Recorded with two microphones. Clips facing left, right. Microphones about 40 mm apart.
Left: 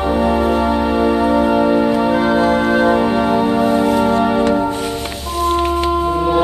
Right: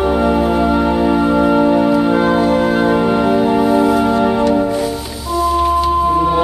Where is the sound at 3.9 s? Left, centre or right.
Left.